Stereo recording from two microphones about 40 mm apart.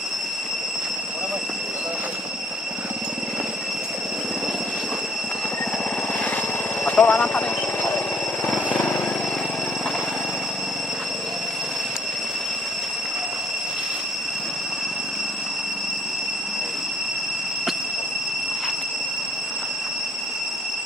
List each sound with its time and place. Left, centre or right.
6.9 s vehicle: left